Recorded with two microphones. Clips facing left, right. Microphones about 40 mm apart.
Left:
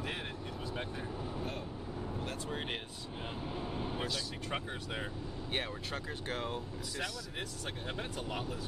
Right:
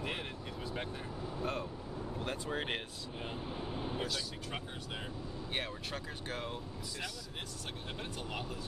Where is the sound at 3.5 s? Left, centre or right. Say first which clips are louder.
Left 2 dB; left.